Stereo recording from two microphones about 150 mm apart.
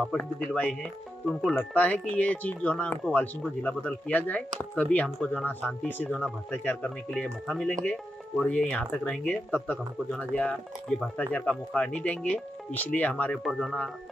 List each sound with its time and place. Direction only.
0.1 s speech: 5° left (ahead or behind)